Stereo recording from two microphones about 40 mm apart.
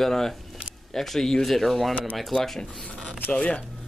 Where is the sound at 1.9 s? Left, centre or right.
Left.